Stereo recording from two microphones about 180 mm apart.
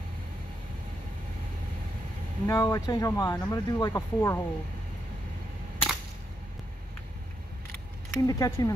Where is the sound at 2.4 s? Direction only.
15° left (ahead or behind).